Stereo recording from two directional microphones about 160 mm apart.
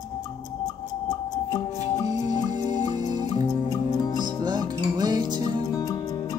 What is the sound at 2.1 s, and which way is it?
Music, 50° left (ahead or behind).